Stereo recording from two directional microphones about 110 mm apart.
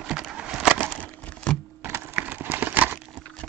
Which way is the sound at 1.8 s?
20° right (ahead or behind).